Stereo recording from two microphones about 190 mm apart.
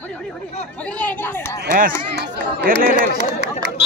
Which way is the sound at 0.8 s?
10° left (ahead or behind).